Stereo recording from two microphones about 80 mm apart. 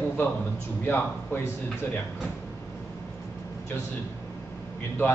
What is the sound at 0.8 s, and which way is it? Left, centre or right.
Speech, left.